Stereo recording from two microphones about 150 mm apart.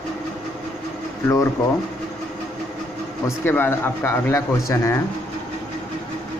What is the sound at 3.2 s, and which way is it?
Speech, 15° left (ahead or behind).